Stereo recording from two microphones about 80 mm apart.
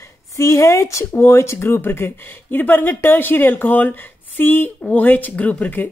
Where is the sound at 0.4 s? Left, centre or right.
Left.